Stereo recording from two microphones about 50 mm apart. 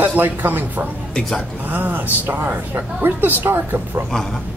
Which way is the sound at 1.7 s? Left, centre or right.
Right.